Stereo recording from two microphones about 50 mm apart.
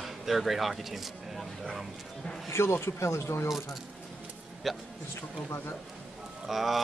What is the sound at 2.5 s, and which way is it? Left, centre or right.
Speech, left.